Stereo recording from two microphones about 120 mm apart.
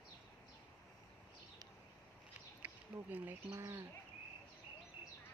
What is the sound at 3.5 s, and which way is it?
Speech, 25° right (ahead or behind).